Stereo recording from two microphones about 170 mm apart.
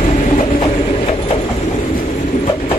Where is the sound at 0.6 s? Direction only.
35° left (ahead or behind).